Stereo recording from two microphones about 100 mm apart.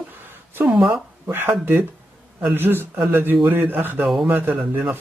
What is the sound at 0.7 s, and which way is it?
Speech, 5° right (ahead or behind).